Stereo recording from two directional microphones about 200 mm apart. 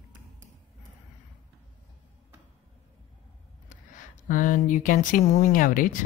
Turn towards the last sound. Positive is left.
turn(degrees=40)  # may be behind; listen again after turning